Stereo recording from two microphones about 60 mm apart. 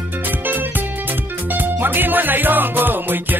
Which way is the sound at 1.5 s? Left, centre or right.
Right.